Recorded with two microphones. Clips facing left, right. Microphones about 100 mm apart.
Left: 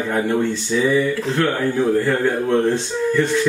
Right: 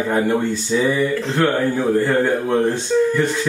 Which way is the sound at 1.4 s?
5° right (ahead or behind).